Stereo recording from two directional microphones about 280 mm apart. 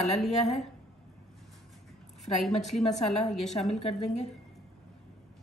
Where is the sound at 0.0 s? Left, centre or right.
Centre.